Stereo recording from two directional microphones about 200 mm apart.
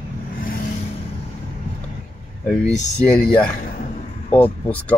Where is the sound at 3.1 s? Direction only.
5° left (ahead or behind).